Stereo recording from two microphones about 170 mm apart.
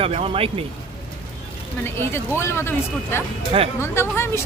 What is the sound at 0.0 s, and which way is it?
Speech, 35° right (ahead or behind).